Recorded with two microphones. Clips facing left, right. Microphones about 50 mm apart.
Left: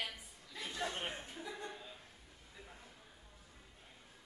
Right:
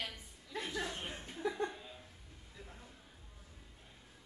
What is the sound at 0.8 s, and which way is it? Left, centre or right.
Chuckle, left.